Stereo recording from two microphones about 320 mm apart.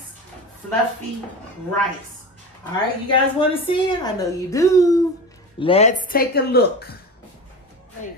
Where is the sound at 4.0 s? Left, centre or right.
Centre; by 7.0 s left.